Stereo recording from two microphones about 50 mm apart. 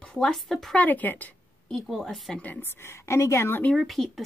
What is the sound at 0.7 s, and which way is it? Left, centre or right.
Speech, left.